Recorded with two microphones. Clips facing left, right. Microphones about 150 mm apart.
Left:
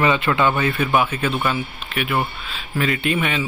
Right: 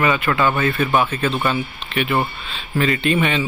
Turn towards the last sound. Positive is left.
turn(degrees=5)  # may be behind; listen again after turning